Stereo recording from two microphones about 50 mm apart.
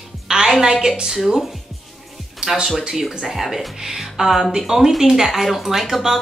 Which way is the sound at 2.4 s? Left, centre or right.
Centre.